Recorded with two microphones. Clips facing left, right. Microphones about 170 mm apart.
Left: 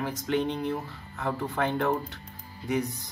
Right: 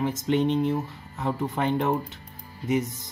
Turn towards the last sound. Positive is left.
turn(degrees=-20)  # may be behind; listen again after turning